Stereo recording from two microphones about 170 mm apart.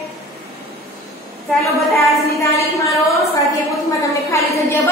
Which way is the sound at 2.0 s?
15° left (ahead or behind).